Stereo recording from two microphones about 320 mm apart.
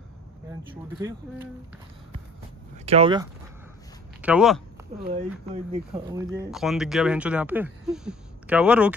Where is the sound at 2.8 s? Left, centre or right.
Centre.